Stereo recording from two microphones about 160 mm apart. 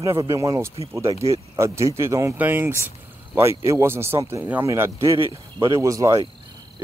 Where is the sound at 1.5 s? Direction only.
15° right (ahead or behind).